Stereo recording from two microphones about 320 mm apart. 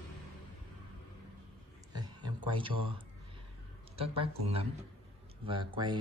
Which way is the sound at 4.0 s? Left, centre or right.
Centre.